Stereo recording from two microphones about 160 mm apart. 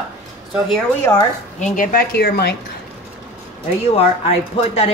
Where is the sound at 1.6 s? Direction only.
60° left (ahead or behind); by 2.5 s 80° left.